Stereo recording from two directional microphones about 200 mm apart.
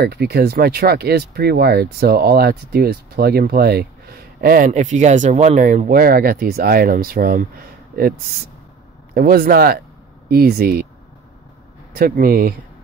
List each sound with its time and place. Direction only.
0.0 s speech: 50° right (ahead or behind)
9.1 s speech: 50° right (ahead or behind)
11.9 s speech: 50° right (ahead or behind)